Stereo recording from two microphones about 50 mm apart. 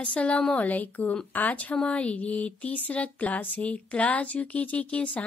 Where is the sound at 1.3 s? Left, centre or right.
Left.